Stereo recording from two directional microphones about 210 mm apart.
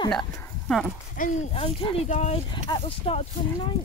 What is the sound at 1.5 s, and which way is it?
Speech, 30° left (ahead or behind).